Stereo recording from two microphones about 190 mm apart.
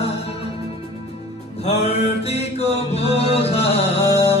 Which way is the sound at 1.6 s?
35° left (ahead or behind).